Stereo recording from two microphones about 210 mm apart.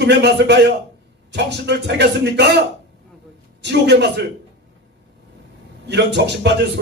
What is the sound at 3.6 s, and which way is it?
Speech, 55° right (ahead or behind).